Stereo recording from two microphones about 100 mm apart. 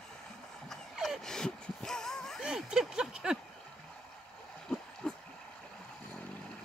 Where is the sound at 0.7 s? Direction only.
Centre (ahead or behind).